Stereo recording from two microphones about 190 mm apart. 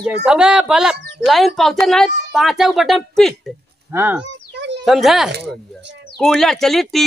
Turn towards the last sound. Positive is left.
turn(degrees=0)  # may be behind; listen again after turning